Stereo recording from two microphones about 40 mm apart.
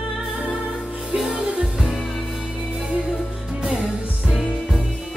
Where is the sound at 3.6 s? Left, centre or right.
Centre.